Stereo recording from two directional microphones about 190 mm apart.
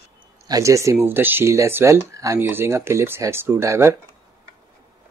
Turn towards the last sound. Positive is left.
turn(degrees=-15)  # may be behind; listen again after turning